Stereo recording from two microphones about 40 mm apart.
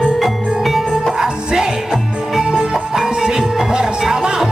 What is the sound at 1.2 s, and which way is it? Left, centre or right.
Music, centre.